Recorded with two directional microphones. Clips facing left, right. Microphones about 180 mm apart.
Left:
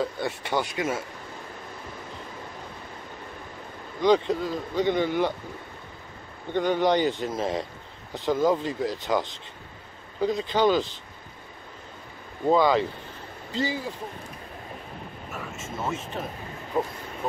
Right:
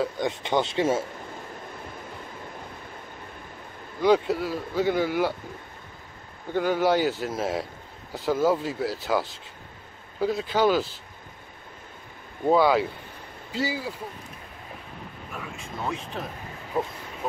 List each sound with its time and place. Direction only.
0.0 s speech: 15° right (ahead or behind)
4.0 s speech: 10° right (ahead or behind)
6.5 s speech: 5° right (ahead or behind)
12.4 s speech: 10° right (ahead or behind)
15.3 s speech: 5° left (ahead or behind)